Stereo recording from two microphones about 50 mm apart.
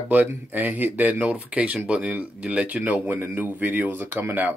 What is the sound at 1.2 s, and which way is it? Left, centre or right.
Speech, right.